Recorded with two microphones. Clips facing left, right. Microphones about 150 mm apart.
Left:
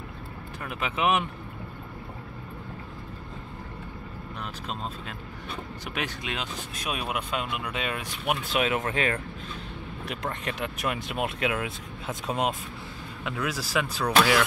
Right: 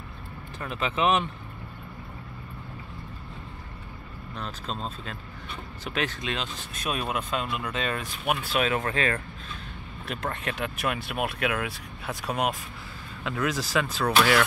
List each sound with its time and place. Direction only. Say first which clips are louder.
0.6 s speech: right 2 dB; 10° left (ahead or behind)
4.4 s speech: right 2 dB; 15° left (ahead or behind)
13.2 s speech: right 3 dB; 10° left (ahead or behind)